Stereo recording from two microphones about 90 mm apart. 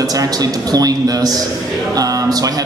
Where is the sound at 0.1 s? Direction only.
45° right (ahead or behind).